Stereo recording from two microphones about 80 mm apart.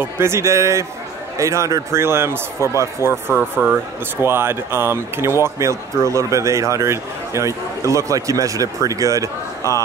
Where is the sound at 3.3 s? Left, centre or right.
Right.